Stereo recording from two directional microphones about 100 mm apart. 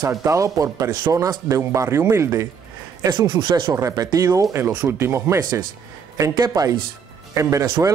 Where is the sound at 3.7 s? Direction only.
35° right (ahead or behind).